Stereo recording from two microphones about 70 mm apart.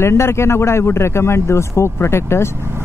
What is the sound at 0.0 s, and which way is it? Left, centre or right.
Speech, left.